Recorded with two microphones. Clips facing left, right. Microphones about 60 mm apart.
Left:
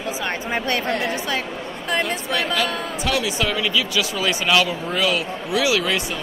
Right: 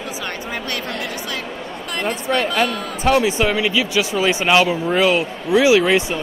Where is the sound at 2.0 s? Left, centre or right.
Right.